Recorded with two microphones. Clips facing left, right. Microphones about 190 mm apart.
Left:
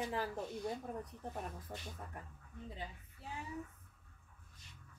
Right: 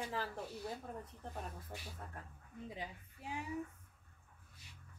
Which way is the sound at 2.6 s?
15° right (ahead or behind).